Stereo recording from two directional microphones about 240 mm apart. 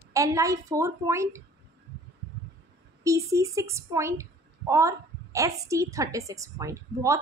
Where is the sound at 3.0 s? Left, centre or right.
Centre.